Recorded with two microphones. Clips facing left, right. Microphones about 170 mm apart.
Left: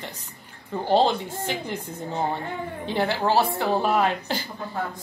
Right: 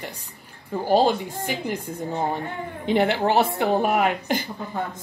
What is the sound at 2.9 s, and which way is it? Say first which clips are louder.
A woman's voice: right 3 dB; 20° right (ahead or behind).